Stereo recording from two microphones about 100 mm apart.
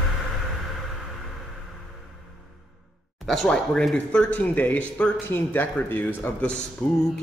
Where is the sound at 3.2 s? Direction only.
5° left (ahead or behind).